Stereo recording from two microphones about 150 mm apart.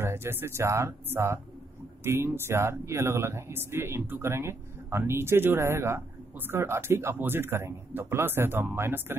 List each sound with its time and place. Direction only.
0.0 s speech: 15° right (ahead or behind)